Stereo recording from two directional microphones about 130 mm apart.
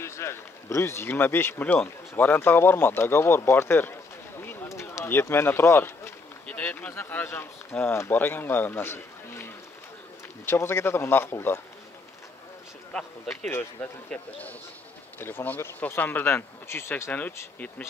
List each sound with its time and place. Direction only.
0.0 s speech: 20° left (ahead or behind)
4.5 s a sound: 20° left (ahead or behind)
6.4 s speech: 10° left (ahead or behind)
13.5 s speech: 15° left (ahead or behind)